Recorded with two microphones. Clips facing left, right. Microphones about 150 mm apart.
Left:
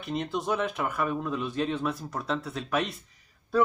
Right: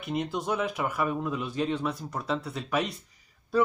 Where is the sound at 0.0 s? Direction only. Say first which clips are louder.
Even; 5° right (ahead or behind).